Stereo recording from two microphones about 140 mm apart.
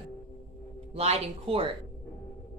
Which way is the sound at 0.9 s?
45° right (ahead or behind).